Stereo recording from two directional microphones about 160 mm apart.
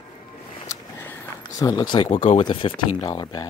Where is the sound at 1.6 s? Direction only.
25° left (ahead or behind).